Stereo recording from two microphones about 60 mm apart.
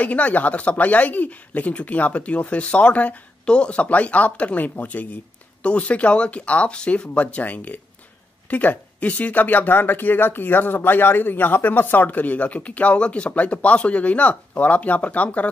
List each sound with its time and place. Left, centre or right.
0.0 s speech: left